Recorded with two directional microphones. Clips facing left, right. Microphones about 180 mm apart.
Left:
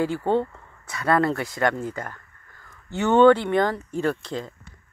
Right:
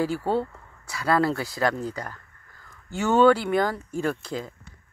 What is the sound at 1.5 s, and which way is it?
Speech, 35° right (ahead or behind).